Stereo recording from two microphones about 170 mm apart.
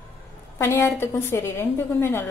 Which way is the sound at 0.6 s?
15° left (ahead or behind).